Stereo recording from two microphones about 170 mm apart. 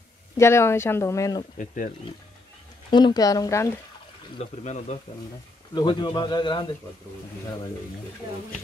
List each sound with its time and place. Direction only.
0.4 s speech: 15° left (ahead or behind)
2.9 s speech: 25° left (ahead or behind)
4.6 s speech: 40° left (ahead or behind)
5.8 s speech: 25° left (ahead or behind)